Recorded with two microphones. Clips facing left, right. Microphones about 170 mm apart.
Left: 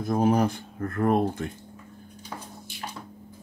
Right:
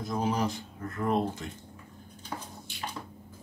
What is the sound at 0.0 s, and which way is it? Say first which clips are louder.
Speech: left 7 dB; 55° left (ahead or behind).